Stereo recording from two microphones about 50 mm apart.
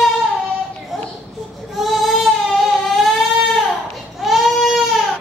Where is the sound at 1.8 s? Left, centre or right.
Centre.